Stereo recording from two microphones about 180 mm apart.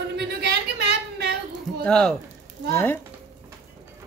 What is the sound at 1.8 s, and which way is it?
Speech, 5° left (ahead or behind).